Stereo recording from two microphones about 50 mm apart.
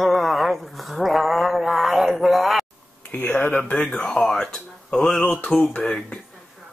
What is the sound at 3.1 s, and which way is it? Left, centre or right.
Speech, left.